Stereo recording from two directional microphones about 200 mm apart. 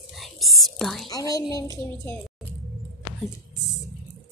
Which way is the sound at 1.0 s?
15° left (ahead or behind).